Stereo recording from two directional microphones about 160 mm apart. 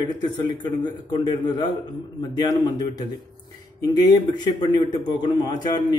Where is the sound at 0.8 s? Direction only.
30° left (ahead or behind).